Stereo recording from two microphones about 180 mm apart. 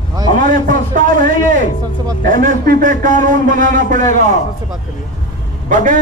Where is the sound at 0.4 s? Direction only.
45° right (ahead or behind).